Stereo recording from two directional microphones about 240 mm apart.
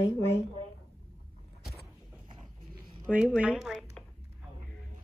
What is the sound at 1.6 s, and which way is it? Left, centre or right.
Vehicle, centre.